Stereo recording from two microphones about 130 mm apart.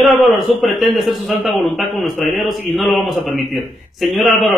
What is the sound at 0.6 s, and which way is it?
A man's voice, centre (ahead or behind).